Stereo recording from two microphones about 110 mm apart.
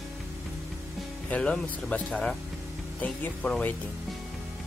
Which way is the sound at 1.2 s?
10° left (ahead or behind).